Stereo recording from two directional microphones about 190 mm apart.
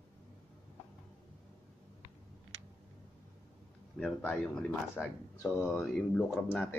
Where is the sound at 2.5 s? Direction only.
90° right.